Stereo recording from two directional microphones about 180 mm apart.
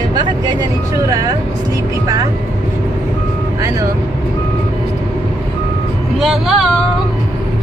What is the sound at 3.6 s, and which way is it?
Vehicle, 20° right (ahead or behind).